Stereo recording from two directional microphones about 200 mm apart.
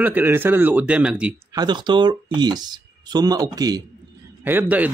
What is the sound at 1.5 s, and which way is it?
Speech, 20° right (ahead or behind).